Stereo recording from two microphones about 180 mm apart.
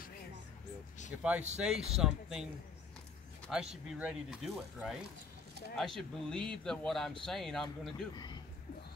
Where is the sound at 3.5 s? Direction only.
5° right (ahead or behind).